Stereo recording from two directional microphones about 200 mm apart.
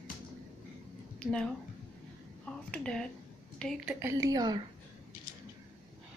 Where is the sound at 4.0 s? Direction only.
15° right (ahead or behind).